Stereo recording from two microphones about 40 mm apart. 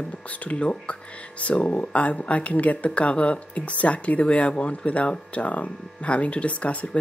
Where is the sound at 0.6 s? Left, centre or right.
Left.